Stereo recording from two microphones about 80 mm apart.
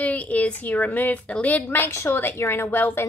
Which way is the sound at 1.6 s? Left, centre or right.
Left.